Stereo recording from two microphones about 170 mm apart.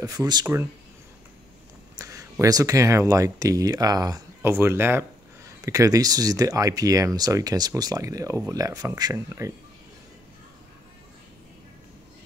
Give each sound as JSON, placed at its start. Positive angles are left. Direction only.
{"t": 0.0, "sound": "speech", "side_deg": -20}
{"t": 2.0, "sound": "speech", "side_deg": -20}